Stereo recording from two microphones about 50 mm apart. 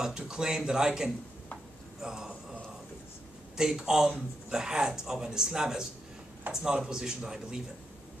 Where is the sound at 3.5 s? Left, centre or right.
Centre.